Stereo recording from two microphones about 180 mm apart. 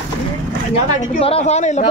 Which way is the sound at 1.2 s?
35° left (ahead or behind).